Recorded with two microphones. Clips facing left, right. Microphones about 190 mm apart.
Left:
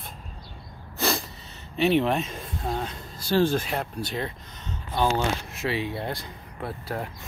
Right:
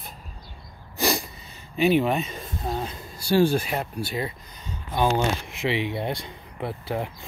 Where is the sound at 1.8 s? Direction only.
5° right (ahead or behind).